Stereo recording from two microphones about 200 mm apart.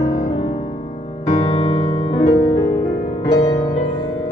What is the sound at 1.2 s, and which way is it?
Music, 30° left (ahead or behind).